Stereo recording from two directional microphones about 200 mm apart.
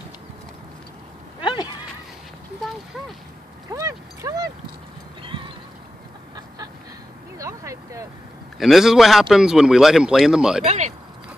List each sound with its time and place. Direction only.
1.4 s a sound: 25° left (ahead or behind)
3.7 s a sound: 15° right (ahead or behind)
5.2 s music: 25° right (ahead or behind)
7.3 s vehicle: 15° right (ahead or behind)
8.5 s a man's voice: centre (ahead or behind)
10.6 s speech: 35° right (ahead or behind)